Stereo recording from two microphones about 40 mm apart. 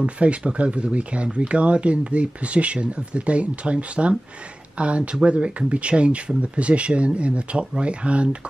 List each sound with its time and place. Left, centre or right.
0.0 s speech: right